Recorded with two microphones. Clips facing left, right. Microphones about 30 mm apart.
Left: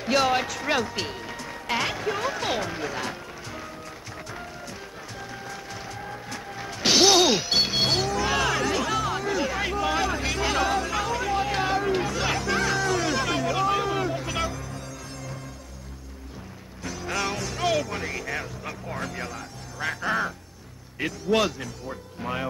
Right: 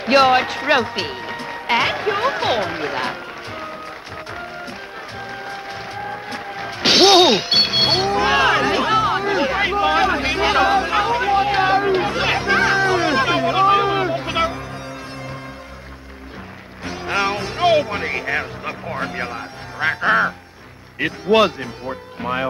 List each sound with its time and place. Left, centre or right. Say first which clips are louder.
0.0 s speech: right 9 dB; right
5.3 s music: right 8 dB; right
16.8 s music: right 8 dB; right
21.0 s speech: right 8 dB; right